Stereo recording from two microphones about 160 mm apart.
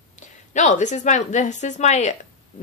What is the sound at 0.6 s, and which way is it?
Speech, 45° left (ahead or behind).